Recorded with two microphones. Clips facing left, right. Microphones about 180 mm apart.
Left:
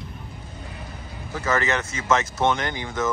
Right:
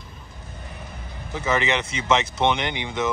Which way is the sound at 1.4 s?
15° right (ahead or behind).